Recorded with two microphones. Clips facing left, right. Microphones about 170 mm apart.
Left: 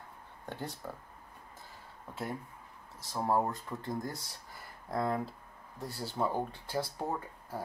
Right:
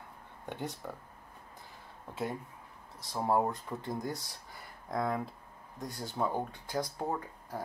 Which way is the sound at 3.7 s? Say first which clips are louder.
Right 1 dB; 20° right (ahead or behind).